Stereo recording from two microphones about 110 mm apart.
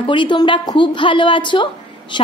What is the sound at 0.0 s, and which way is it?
A woman's voice, 50° left (ahead or behind).